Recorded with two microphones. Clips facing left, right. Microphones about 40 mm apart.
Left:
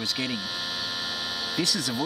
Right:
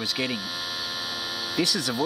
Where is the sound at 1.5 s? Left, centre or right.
Centre.